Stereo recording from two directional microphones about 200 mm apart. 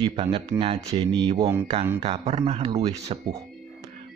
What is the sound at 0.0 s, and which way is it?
Speech, 30° right (ahead or behind).